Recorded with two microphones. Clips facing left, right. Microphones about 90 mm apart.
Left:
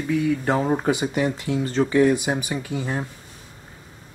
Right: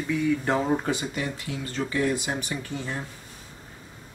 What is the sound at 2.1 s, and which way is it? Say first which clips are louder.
Speech: left 5 dB; 15° left (ahead or behind).